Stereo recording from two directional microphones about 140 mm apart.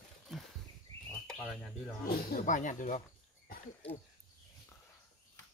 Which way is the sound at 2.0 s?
90° left.